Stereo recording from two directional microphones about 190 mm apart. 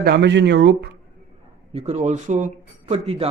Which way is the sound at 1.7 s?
35° right (ahead or behind).